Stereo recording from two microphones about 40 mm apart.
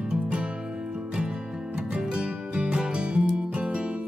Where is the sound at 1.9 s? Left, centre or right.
Right.